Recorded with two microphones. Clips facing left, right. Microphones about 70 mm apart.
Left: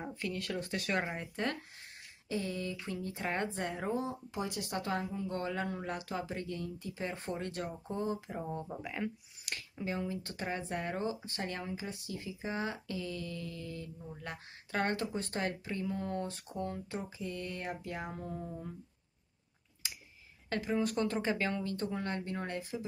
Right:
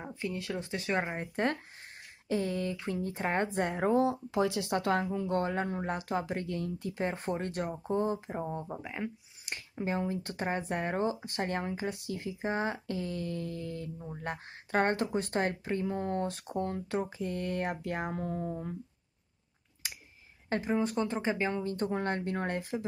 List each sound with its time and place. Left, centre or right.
0.0 s speech: centre
1.1 s speech: right
3.9 s speech: right
4.9 s speech: right
7.1 s speech: right; by 9.1 s centre
9.5 s speech: right
16.6 s speech: right
17.2 s speech: right
17.6 s speech: right
20.4 s speech: right
21.7 s speech: right